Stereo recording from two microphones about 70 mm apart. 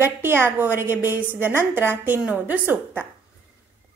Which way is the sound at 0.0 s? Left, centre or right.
Right.